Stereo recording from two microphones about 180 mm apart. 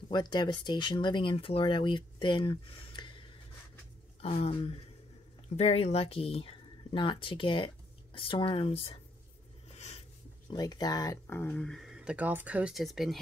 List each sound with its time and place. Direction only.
0.1 s speech: 25° left (ahead or behind)
10.5 s speech: 20° left (ahead or behind); by 13.2 s centre (ahead or behind)